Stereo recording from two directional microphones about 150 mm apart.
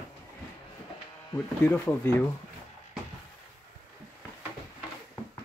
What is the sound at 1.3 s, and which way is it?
Speech, 15° left (ahead or behind).